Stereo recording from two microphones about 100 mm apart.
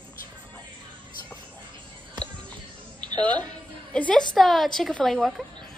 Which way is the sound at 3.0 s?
45° right (ahead or behind).